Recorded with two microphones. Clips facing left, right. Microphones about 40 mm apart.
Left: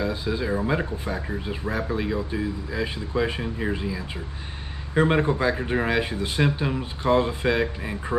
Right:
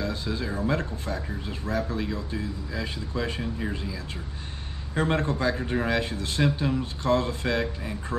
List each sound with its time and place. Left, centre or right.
0.0 s speech: centre